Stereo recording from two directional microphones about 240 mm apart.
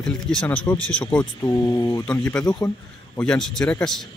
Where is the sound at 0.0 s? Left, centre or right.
Centre.